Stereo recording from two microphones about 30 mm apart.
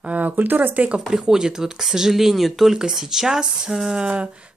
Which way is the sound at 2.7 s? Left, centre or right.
Centre.